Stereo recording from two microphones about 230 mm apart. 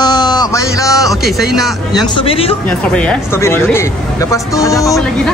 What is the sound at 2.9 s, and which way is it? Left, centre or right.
A man's voice, centre.